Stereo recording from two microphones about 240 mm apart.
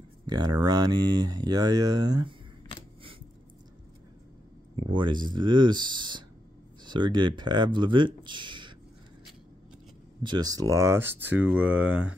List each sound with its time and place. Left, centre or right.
0.3 s speech: centre
4.7 s speech: centre
10.2 s speech: centre